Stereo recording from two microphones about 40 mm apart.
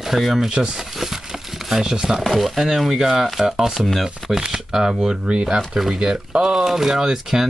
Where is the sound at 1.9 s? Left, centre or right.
Centre.